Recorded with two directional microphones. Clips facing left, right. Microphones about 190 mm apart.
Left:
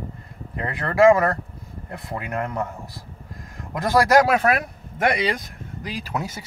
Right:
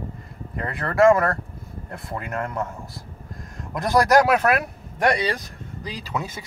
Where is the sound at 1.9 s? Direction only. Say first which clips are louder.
Left 1 dB; 10° left (ahead or behind).